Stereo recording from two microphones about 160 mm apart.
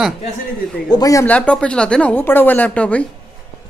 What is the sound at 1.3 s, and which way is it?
A man's voice, 5° left (ahead or behind).